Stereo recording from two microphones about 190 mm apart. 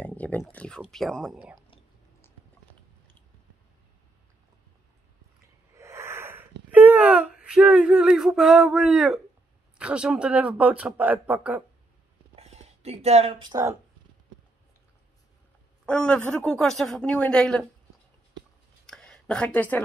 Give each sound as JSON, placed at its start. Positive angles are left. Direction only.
{"t": 0.0, "sound": "speech", "side_deg": 10}
{"t": 5.8, "sound": "wheeze", "side_deg": -15}
{"t": 6.7, "sound": "speech", "side_deg": -10}
{"t": 12.4, "sound": "a sound", "side_deg": -35}
{"t": 15.8, "sound": "speech", "side_deg": 5}
{"t": 18.9, "sound": "a sound", "side_deg": 5}